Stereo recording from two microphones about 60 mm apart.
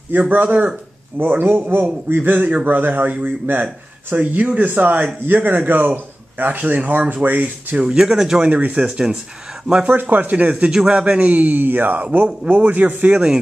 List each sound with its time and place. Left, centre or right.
0.1 s a man's voice: right
8.0 s speech: centre
8.4 s a man's voice: right
8.8 s speech: centre
9.8 s a man's voice: right
13.1 s speech: centre